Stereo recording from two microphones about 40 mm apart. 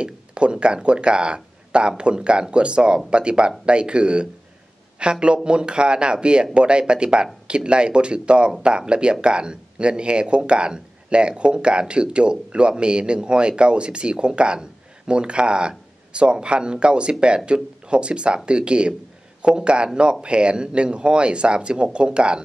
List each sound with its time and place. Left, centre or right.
0.0 s speech: right